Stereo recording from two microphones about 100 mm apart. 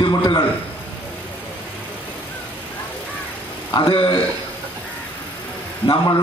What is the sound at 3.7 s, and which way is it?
Mantra, 60° left (ahead or behind).